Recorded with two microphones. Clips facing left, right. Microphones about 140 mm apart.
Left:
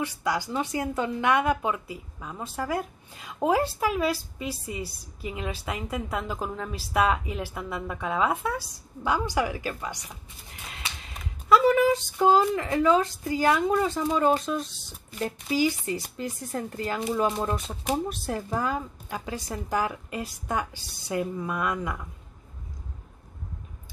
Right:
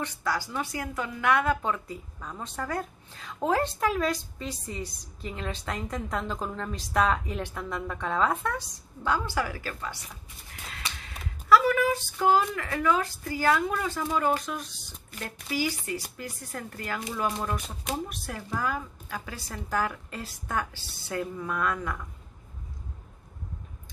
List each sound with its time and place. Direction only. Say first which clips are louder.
0.0 s a woman's voice: left 3 dB; 15° left (ahead or behind)